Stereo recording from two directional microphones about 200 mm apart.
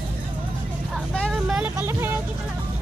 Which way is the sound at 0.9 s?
Centre (ahead or behind).